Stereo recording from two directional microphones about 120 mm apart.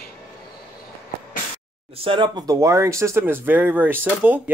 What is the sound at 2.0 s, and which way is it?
Speech, 45° right (ahead or behind).